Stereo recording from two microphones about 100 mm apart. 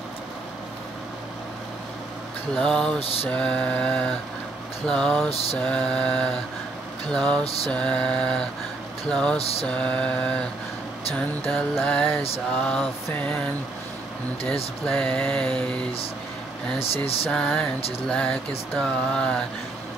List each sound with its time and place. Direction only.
2.5 s mantra: 5° left (ahead or behind)
4.8 s music: 5° left (ahead or behind)
5.3 s a sound: 85° left
5.6 s mantra: 10° left (ahead or behind)
7.4 s a sound: 85° left
7.7 s mantra: 10° left (ahead or behind)
9.4 s mantra: 90° left
9.7 s mantra: 10° left (ahead or behind)
11.4 s music: 5° left (ahead or behind)
12.5 s mantra: 10° left (ahead or behind)
14.4 s vehicle: 75° left (ahead or behind)
14.9 s mantra: 10° left (ahead or behind)
16.8 s vehicle: 75° left (ahead or behind)
17.3 s mantra: 5° left (ahead or behind)